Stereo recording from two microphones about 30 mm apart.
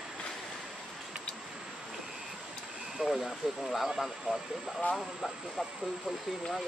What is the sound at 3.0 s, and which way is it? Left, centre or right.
Speech, right.